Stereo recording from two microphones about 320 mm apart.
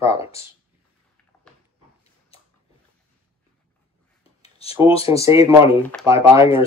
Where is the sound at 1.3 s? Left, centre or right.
Centre.